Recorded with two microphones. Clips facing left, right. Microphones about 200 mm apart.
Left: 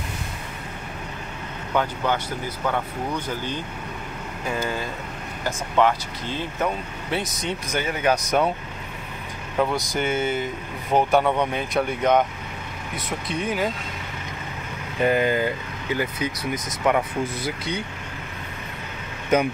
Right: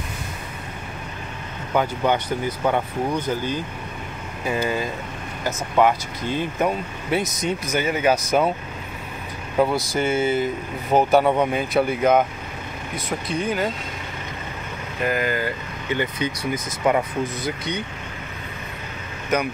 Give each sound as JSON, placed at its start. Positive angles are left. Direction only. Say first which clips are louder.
{"t": 1.7, "sound": "speech", "louder": "right 3 dB", "side_deg": -15}
{"t": 4.5, "sound": "speech", "louder": "right 4 dB", "side_deg": -10}
{"t": 9.6, "sound": "speech", "louder": "right 3 dB", "side_deg": -10}
{"t": 15.0, "sound": "speech", "louder": "left 3 dB", "side_deg": 25}
{"t": 16.0, "sound": "speech", "louder": "right 2 dB", "side_deg": 5}